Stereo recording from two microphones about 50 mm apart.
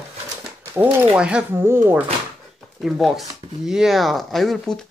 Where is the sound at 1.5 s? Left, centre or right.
Right.